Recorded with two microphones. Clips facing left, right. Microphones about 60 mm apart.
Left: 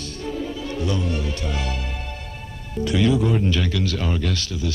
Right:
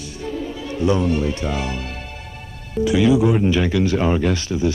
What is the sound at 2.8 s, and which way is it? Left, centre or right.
Speech, centre.